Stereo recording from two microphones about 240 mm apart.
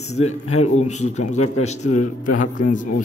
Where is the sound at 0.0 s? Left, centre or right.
Left.